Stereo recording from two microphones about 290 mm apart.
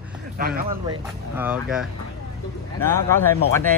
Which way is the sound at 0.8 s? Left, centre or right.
Centre.